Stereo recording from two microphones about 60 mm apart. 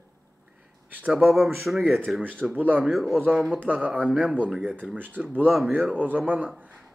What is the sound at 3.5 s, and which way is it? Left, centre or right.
Speech, right.